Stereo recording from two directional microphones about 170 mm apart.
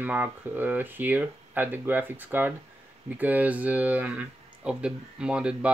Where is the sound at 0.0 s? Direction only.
10° right (ahead or behind).